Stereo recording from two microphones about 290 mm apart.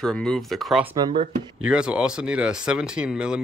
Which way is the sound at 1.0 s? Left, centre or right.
Centre.